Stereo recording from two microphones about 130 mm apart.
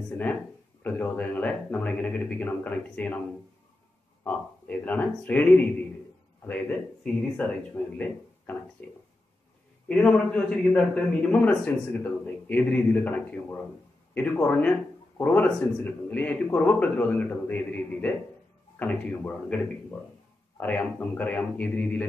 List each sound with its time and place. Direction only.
0.8 s a man's voice: 10° left (ahead or behind)
4.2 s a man's voice: 10° left (ahead or behind)
9.8 s a man's voice: 10° left (ahead or behind)